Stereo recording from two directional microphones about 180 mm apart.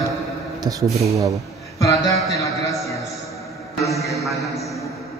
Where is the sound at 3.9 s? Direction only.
Centre (ahead or behind).